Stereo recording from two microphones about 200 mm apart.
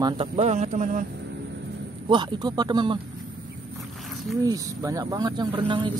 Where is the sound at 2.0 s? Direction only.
20° right (ahead or behind).